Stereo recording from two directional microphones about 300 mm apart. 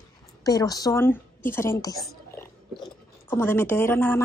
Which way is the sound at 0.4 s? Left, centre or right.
Centre.